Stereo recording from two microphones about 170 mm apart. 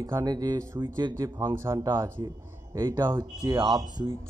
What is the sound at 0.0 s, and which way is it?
Speech, 20° right (ahead or behind).